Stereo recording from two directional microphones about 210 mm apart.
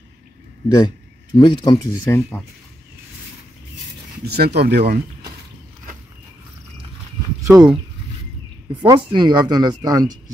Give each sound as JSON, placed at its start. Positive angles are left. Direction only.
{"t": 0.7, "sound": "speech", "side_deg": 20}
{"t": 4.3, "sound": "speech", "side_deg": -50}
{"t": 7.4, "sound": "speech", "side_deg": -15}
{"t": 8.8, "sound": "speech", "side_deg": -20}